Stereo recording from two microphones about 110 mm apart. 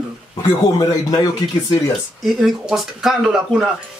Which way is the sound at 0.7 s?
35° left (ahead or behind).